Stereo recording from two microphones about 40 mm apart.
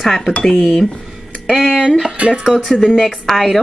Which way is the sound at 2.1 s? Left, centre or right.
Right.